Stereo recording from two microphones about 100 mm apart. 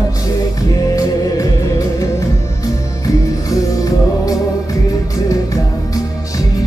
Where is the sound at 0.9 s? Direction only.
35° left (ahead or behind).